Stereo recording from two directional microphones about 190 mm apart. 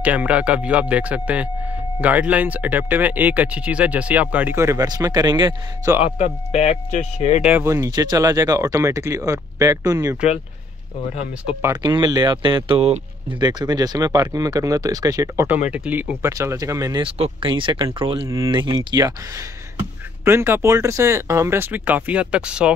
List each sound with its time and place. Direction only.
0.0 s speech: 5° right (ahead or behind)
6.0 s speech: 35° left (ahead or behind)
7.4 s speech: 10° right (ahead or behind)
11.6 s speech: 25° right (ahead or behind); by 22.7 s 5° right (ahead or behind)